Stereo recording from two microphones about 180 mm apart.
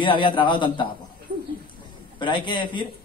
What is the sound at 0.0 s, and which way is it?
Speech, 25° left (ahead or behind).